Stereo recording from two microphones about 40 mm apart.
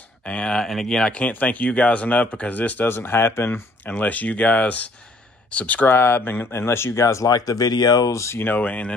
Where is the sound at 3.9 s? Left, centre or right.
Left.